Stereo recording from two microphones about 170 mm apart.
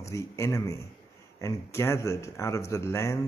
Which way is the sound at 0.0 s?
15° left (ahead or behind).